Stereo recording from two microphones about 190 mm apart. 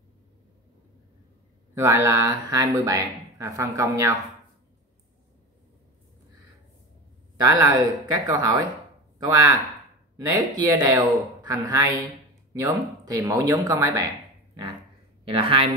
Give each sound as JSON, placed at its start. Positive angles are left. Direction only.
{"t": 1.8, "sound": "speech", "side_deg": -15}
{"t": 7.3, "sound": "speech", "side_deg": -20}
{"t": 15.2, "sound": "speech", "side_deg": -30}